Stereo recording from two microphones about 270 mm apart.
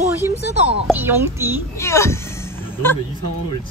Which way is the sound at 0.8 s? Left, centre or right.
Centre.